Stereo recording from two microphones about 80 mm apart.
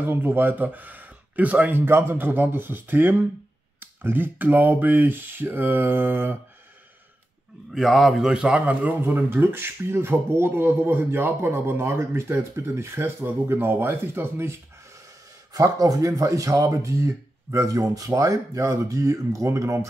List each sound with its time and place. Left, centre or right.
0.0 s speech: right
7.7 s a man's voice: centre
8.5 s speech: centre
15.5 s speech: right